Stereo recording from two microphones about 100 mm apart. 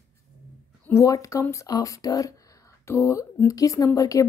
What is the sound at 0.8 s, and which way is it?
Speech, 30° left (ahead or behind).